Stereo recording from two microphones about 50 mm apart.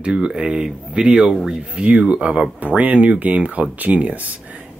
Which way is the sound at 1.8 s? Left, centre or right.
Right.